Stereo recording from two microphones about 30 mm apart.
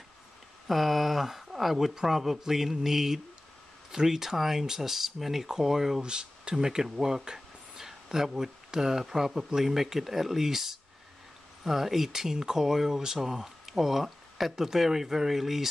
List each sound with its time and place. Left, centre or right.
0.7 s speech: centre
6.0 s speech: right
6.5 s speech: centre